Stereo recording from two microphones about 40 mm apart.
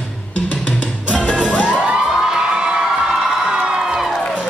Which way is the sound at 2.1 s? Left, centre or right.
Centre.